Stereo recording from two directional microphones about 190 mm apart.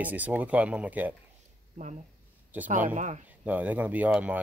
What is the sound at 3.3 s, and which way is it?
Speech, 10° right (ahead or behind).